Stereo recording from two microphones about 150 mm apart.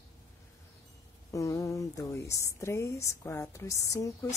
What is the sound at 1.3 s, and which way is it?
Speech, 20° left (ahead or behind).